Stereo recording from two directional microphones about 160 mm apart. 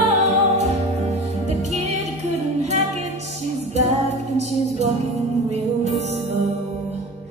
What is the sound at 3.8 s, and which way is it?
Music, 45° right (ahead or behind).